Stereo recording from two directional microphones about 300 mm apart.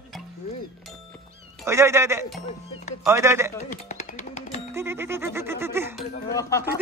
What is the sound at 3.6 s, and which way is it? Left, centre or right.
Music, left.